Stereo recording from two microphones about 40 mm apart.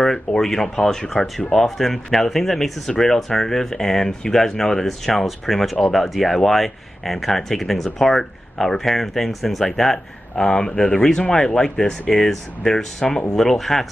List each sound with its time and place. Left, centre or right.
0.4 s speech: centre
5.2 s speech: centre
10.4 s speech: left